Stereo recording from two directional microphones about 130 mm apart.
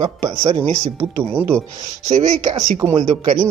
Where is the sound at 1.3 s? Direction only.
20° right (ahead or behind).